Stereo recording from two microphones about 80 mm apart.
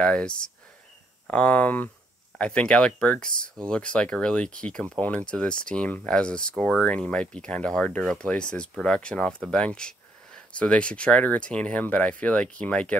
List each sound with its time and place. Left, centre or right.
0.0 s speech: centre